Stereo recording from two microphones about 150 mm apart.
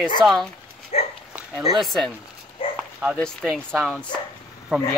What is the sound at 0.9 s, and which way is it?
Dog, 50° left (ahead or behind).